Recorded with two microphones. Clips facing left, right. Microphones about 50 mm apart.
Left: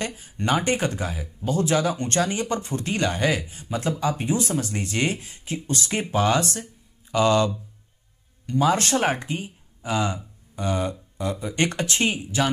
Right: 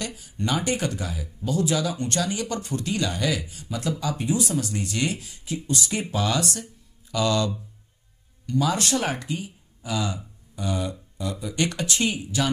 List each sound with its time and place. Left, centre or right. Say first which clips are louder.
0.0 s speech: left 3 dB; left